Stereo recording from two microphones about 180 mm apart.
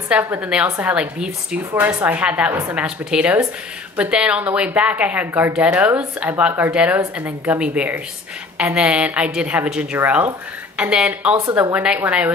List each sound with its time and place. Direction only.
0.1 s a woman's voice: 10° right (ahead or behind)